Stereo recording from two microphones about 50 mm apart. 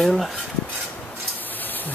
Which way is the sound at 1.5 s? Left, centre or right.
Left.